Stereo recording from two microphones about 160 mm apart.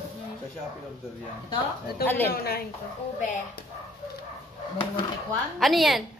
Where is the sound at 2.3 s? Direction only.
75° left (ahead or behind).